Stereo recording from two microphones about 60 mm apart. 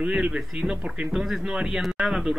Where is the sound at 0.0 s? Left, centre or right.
Centre.